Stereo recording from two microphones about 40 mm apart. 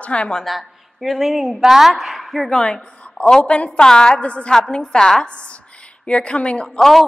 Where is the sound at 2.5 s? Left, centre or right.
Left.